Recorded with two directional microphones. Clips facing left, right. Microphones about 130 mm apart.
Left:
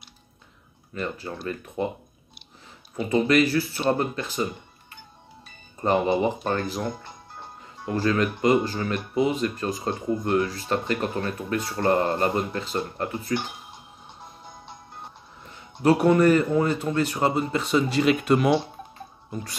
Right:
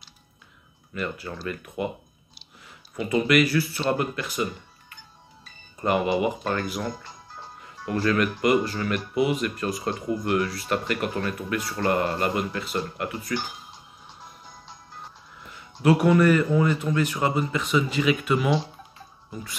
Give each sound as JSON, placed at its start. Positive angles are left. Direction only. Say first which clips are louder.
{"t": 0.9, "sound": "speech", "louder": "even", "side_deg": 30}
{"t": 3.1, "sound": "speech", "louder": "left 1 dB", "side_deg": 30}
{"t": 5.8, "sound": "speech", "louder": "left 1 dB", "side_deg": 25}
{"t": 15.8, "sound": "speech", "louder": "left 1 dB", "side_deg": 30}